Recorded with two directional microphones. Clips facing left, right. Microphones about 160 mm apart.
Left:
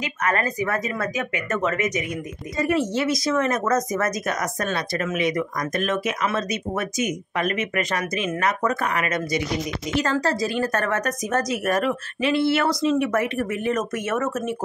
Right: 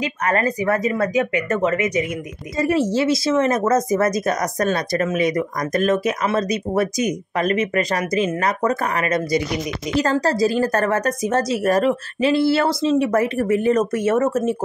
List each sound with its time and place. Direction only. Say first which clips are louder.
0.0 s speech: right 4 dB; 35° right (ahead or behind)